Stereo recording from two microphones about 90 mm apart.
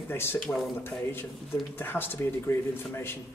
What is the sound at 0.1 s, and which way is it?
Speech, 25° left (ahead or behind).